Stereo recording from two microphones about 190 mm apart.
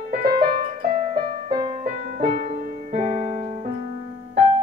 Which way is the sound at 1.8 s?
45° right (ahead or behind).